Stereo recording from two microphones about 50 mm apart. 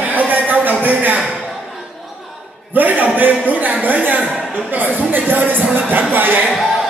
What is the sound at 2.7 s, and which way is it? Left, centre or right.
A man's voice, right.